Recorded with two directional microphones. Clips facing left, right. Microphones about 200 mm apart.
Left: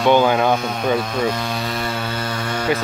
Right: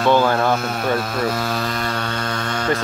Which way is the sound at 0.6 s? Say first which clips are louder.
Left 1 dB; 5° right (ahead or behind).